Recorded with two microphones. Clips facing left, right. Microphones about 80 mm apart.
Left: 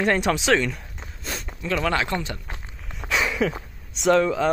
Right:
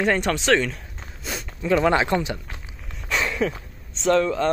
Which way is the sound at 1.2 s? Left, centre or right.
Centre.